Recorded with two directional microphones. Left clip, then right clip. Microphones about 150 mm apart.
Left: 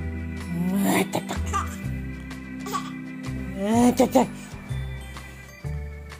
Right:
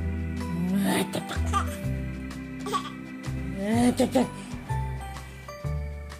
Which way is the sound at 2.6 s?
20° right (ahead or behind).